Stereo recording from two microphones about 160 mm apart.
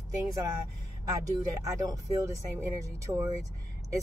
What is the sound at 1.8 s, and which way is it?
Speech, 20° right (ahead or behind).